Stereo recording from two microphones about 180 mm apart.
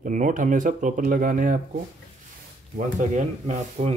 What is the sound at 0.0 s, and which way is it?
Speech, 45° right (ahead or behind).